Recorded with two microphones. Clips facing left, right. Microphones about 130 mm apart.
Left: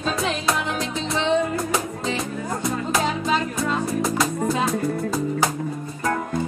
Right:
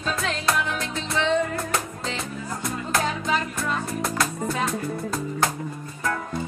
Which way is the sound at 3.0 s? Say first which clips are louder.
Left 2 dB; 20° left (ahead or behind).